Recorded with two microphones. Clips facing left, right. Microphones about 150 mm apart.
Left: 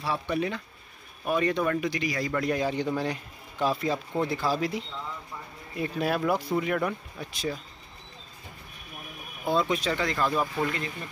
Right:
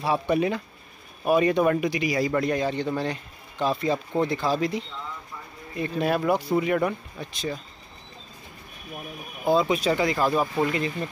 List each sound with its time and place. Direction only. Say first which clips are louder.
0.0 s speech: right 6 dB; 15° right (ahead or behind)
2.4 s a man's voice: right 2 dB; 5° left (ahead or behind)
9.5 s speech: right 5 dB; 5° right (ahead or behind)